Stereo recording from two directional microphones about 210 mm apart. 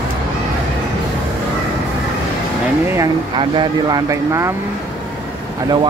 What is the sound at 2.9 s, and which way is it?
Speech, 20° right (ahead or behind).